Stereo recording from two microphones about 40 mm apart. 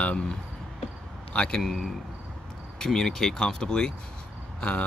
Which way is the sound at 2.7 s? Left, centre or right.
Centre.